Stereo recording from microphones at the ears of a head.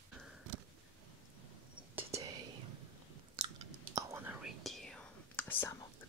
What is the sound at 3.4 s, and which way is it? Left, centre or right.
Chewing, right.